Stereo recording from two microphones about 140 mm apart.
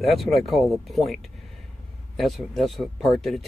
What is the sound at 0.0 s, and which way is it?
Speech, centre (ahead or behind).